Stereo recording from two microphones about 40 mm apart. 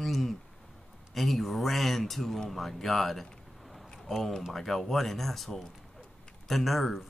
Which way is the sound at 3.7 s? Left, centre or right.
Centre.